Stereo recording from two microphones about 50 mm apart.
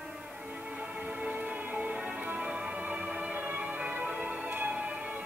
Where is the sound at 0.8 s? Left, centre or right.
Right.